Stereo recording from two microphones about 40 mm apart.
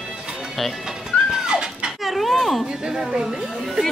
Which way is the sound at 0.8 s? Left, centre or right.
Centre.